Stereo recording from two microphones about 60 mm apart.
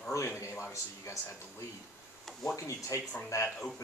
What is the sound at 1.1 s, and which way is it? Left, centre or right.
Speech, left.